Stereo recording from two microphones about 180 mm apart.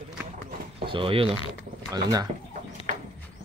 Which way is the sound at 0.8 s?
30° right (ahead or behind).